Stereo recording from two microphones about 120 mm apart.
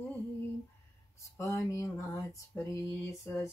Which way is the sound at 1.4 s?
25° left (ahead or behind).